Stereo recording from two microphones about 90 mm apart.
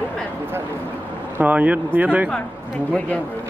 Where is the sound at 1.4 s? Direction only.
15° right (ahead or behind).